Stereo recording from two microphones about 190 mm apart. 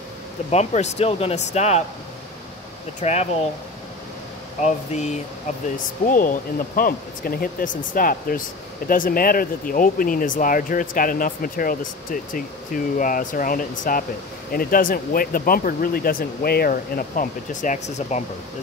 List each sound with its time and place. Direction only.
0.5 s speech: 35° left (ahead or behind)
3.0 s speech: 35° left (ahead or behind)
4.6 s speech: 40° left (ahead or behind)